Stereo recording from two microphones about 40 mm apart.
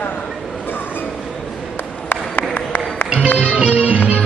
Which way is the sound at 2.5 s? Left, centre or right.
Left.